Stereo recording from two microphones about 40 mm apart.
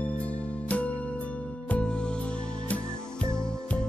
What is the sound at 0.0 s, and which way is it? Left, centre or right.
Music, left.